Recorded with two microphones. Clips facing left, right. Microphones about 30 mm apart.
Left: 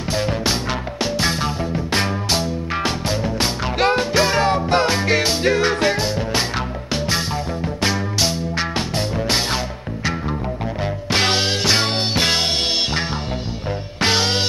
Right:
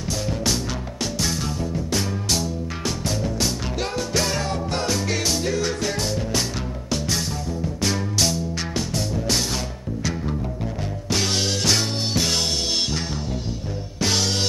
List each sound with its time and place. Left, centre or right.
0.1 s music: left
4.1 s music: left
5.9 s music: left
11.1 s music: left
11.3 s music: left
14.0 s music: left